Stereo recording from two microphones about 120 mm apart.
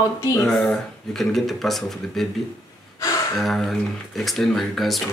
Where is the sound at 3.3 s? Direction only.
Centre (ahead or behind).